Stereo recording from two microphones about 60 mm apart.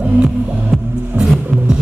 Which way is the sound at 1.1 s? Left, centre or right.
Right.